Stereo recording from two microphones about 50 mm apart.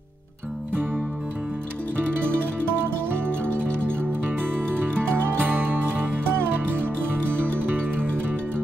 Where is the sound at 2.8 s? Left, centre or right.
Right.